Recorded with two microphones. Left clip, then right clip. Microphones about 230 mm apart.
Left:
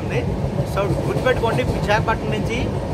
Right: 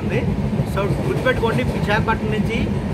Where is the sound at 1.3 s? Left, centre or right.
Centre.